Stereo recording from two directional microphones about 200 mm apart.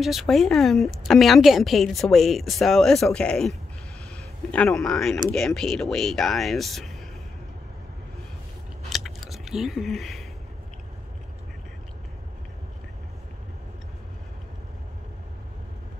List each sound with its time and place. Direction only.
0.0 s a woman's voice: centre (ahead or behind)
8.8 s biting: centre (ahead or behind)